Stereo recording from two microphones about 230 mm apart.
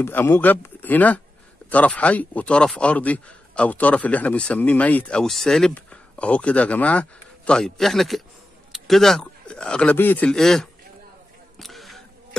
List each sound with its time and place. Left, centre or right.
0.0 s speech: centre
11.5 s single-lens reflex camera: centre